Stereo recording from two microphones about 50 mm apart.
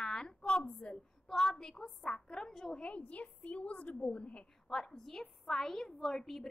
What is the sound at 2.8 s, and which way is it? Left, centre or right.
A woman's voice, left.